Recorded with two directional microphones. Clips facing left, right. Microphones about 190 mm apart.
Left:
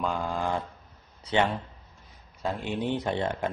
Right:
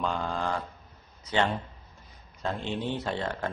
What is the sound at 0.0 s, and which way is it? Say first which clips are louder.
Speech: left 1 dB; centre (ahead or behind).